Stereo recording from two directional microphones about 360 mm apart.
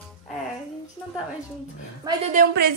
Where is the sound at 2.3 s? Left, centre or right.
Right.